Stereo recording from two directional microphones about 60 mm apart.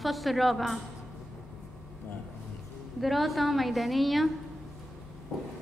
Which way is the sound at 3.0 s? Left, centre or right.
Centre.